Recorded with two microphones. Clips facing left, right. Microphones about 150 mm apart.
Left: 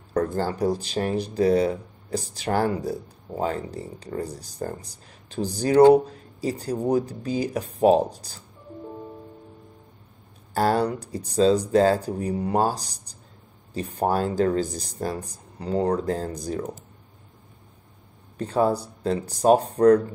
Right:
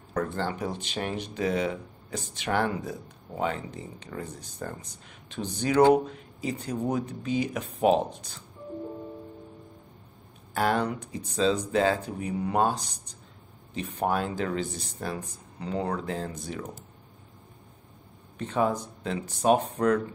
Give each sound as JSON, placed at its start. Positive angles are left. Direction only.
{"t": 0.1, "sound": "speech", "side_deg": 40}
{"t": 10.5, "sound": "speech", "side_deg": 40}
{"t": 18.4, "sound": "speech", "side_deg": 35}